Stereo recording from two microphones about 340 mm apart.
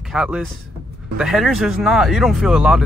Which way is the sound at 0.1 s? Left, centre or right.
Centre.